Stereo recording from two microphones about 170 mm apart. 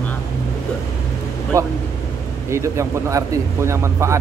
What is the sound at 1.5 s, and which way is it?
A man's voice, 20° right (ahead or behind).